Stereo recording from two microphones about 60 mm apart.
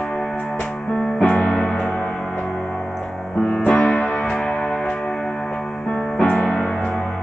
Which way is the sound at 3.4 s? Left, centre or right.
Left.